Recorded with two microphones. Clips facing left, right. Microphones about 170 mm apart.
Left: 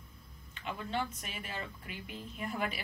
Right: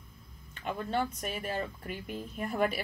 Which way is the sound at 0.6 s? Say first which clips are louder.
Right 5 dB; 45° right (ahead or behind).